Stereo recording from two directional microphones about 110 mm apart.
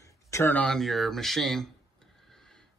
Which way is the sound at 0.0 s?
25° left (ahead or behind).